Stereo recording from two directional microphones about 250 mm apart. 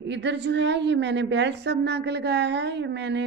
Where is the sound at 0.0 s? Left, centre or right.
Right.